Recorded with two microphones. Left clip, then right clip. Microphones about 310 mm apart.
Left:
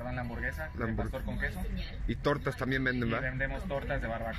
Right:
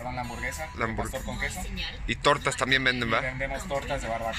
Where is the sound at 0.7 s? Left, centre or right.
Right.